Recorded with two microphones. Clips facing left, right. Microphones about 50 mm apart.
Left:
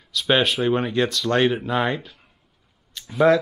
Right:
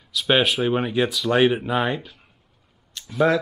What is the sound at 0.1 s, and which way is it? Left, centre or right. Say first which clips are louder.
Speech: even; centre.